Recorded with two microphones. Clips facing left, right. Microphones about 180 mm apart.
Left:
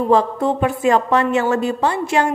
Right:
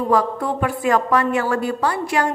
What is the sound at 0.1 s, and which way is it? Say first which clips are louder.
A woman's voice: left 4 dB; 25° left (ahead or behind).